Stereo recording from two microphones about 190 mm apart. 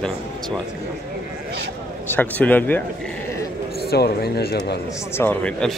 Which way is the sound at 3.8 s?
55° left (ahead or behind).